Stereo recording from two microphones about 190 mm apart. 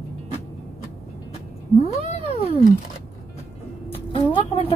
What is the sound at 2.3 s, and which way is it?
Speech, 35° left (ahead or behind).